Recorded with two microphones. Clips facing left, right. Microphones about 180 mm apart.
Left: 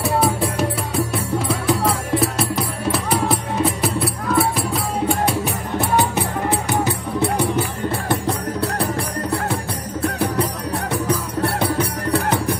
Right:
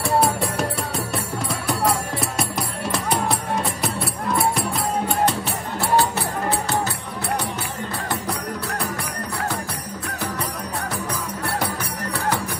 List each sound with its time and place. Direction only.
0.0 s music: centre (ahead or behind)
5.4 s music: 20° left (ahead or behind)
10.9 s music: 65° left (ahead or behind)